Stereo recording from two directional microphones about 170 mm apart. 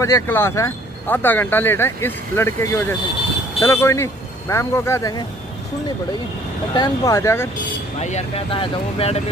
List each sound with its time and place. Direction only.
0.0 s speech: 15° left (ahead or behind)
6.7 s speech: 20° left (ahead or behind)
8.0 s speech: 40° left (ahead or behind)